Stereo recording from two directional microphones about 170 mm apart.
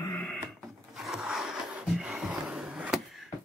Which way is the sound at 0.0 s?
10° left (ahead or behind).